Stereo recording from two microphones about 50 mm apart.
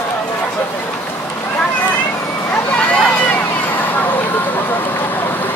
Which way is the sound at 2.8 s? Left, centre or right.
Left.